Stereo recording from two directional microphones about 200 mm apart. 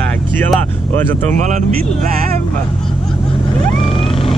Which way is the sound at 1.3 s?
40° right (ahead or behind).